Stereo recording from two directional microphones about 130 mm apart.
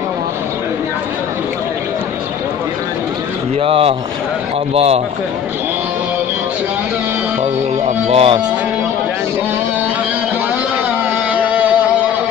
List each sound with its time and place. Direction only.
3.5 s speech: 50° right (ahead or behind)
8.1 s speech: 50° right (ahead or behind)
11.3 s music: 10° right (ahead or behind)